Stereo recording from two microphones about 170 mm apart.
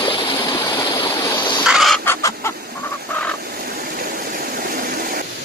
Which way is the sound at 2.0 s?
15° left (ahead or behind).